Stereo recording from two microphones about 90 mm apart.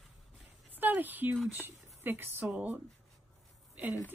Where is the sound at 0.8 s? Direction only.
20° right (ahead or behind).